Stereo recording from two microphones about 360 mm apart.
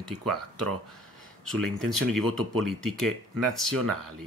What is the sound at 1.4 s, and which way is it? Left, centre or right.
Speech, right.